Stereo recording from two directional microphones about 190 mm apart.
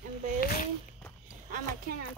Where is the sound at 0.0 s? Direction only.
45° right (ahead or behind).